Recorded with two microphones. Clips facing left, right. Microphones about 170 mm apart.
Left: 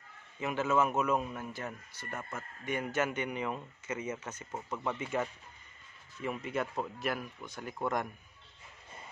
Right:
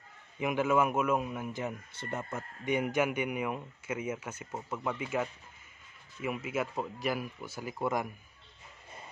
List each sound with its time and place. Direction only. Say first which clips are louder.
0.4 s a man's voice: right 2 dB; 15° right (ahead or behind)